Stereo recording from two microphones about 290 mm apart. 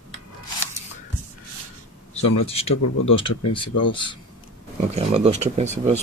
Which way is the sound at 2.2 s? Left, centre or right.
Left.